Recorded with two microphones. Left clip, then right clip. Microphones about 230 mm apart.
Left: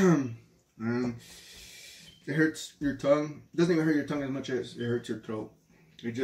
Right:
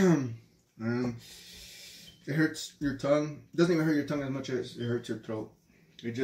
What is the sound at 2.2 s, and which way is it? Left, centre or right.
Speech, centre.